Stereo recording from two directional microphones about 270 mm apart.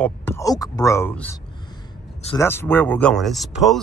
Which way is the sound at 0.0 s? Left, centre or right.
Centre.